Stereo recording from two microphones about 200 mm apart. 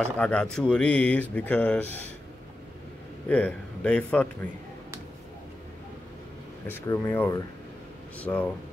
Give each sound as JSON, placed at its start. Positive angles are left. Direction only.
{"t": 0.0, "sound": "speech", "side_deg": 5}
{"t": 3.3, "sound": "speech", "side_deg": 5}
{"t": 6.7, "sound": "speech", "side_deg": 15}